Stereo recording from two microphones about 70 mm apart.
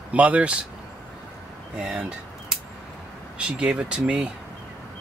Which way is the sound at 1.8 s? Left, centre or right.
Centre.